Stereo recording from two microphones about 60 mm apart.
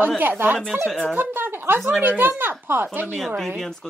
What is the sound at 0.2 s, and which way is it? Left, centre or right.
A woman's voice, right.